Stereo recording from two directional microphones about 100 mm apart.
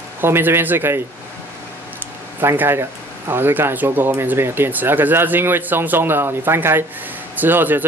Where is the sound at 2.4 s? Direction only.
20° right (ahead or behind).